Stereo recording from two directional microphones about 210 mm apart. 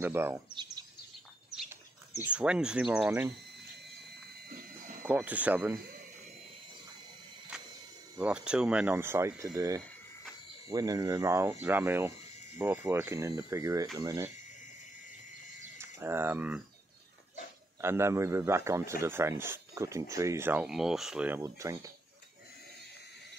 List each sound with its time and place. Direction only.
0.0 s speech: 10° right (ahead or behind)
1.5 s dog: 5° right (ahead or behind)
2.2 s speech: 5° right (ahead or behind)
5.0 s speech: 10° right (ahead or behind)
7.5 s a sound: 5° right (ahead or behind)
8.2 s speech: 5° right (ahead or behind)
16.0 s speech: 10° right (ahead or behind)
17.7 s speech: 10° right (ahead or behind)